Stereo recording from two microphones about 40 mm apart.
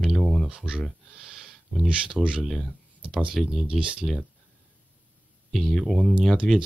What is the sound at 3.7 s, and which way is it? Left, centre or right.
Speech, right.